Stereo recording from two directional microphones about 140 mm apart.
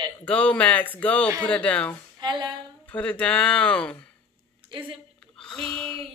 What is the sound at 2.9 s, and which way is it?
Speech, 10° left (ahead or behind).